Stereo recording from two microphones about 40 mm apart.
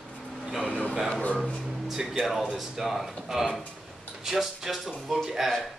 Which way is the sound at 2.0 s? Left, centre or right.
Centre.